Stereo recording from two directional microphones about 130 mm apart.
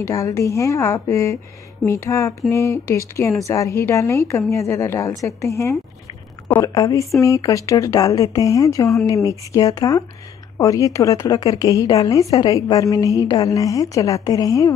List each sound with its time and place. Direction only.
0.0 s speech: 25° left (ahead or behind)